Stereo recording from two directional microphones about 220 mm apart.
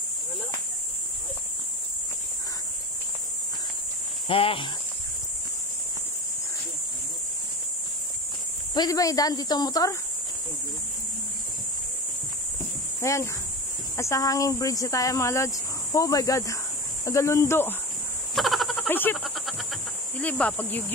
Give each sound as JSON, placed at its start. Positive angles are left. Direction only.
{"t": 4.3, "sound": "speech", "side_deg": 25}
{"t": 8.7, "sound": "speech", "side_deg": 15}
{"t": 13.0, "sound": "speech", "side_deg": 15}
{"t": 18.3, "sound": "a sound", "side_deg": 0}